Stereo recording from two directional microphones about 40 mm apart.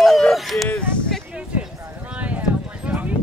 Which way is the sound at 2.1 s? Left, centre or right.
Right.